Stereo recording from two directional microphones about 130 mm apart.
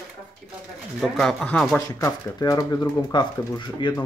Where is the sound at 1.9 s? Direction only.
30° left (ahead or behind).